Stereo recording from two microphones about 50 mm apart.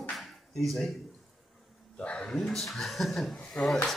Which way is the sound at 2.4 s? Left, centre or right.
Centre.